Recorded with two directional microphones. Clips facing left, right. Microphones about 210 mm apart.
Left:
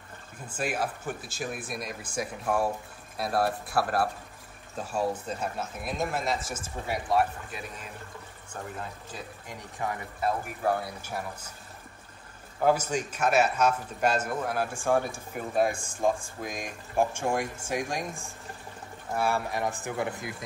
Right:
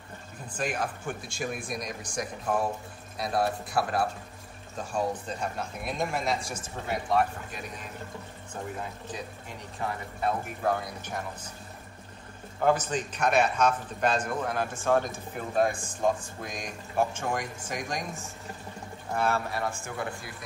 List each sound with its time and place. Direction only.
0.5 s speech: 5° left (ahead or behind)
9.8 s speech: 10° left (ahead or behind)
12.5 s speech: 10° left (ahead or behind)